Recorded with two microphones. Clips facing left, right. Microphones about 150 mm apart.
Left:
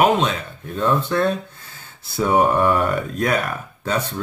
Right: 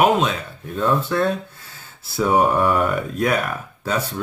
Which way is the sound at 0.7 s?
5° right (ahead or behind).